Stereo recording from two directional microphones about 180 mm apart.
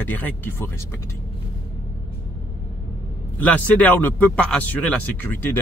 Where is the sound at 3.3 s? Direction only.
10° left (ahead or behind).